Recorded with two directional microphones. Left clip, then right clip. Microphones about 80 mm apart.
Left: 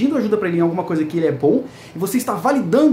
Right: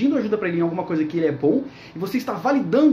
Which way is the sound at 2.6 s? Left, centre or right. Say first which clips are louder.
Left 2 dB; left.